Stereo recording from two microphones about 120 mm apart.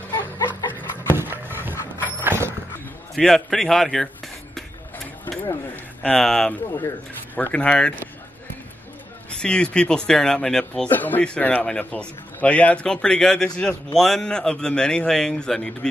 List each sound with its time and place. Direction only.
0.1 s a sound: 35° left (ahead or behind)
1.0 s horse: 15° right (ahead or behind)
3.2 s a man's voice: 5° left (ahead or behind)
6.0 s a man's voice: 5° left (ahead or behind)
9.3 s a man's voice: 10° left (ahead or behind)